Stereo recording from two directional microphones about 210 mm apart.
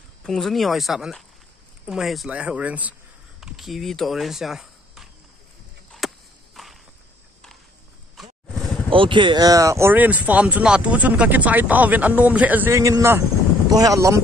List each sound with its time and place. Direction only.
0.2 s speech: centre (ahead or behind)
5.9 s a sound: centre (ahead or behind)
8.9 s speech: 25° right (ahead or behind)